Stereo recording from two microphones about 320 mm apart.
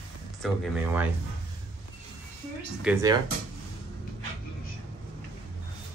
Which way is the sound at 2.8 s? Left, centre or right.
Centre.